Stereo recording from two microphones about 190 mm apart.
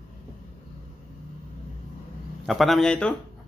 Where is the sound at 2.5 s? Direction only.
Centre (ahead or behind).